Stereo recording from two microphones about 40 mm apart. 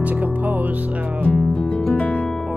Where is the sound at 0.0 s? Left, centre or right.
Right.